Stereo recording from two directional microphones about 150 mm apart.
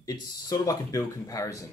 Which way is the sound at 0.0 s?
25° left (ahead or behind).